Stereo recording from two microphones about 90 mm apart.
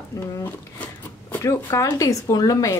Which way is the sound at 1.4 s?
35° left (ahead or behind).